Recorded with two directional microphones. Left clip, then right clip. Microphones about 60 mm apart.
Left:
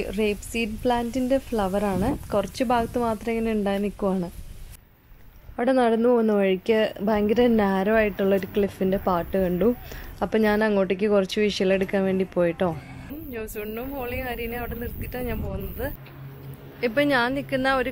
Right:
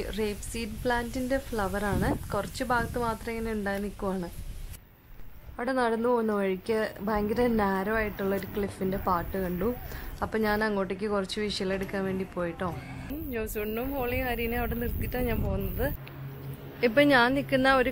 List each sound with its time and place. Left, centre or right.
0.0 s a woman's voice: left
5.8 s a woman's voice: left
12.4 s speech: left
13.3 s speech: centre